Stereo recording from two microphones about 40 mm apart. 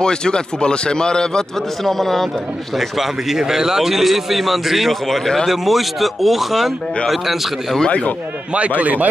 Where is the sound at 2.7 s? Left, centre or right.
Centre.